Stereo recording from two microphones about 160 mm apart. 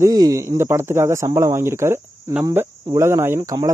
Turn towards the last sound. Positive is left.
turn(degrees=-20)  # may be behind; listen again after turning